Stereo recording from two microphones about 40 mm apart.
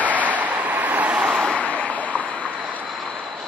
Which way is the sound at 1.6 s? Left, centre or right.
Left.